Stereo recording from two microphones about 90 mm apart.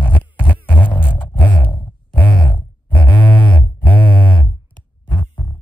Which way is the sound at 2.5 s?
60° left (ahead or behind).